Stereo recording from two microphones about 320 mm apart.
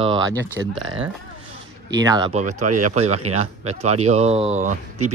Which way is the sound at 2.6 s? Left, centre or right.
Right.